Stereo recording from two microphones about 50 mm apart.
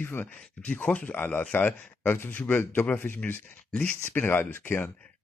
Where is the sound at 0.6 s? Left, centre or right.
Left.